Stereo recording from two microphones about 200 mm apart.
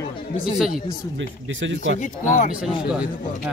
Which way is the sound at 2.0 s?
40° left (ahead or behind).